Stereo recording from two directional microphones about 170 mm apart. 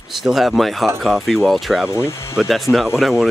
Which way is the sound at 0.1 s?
Centre (ahead or behind).